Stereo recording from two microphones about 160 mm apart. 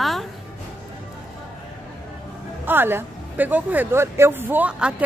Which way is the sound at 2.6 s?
15° right (ahead or behind).